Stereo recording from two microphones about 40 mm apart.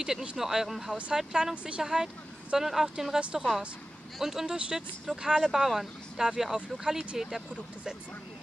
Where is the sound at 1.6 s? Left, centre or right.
Right.